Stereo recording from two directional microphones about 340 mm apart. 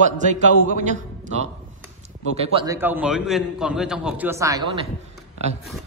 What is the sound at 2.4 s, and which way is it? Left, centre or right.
A man's voice, centre.